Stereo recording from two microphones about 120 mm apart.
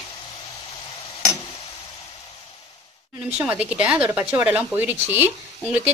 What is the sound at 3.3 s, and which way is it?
A woman's voice, 10° right (ahead or behind).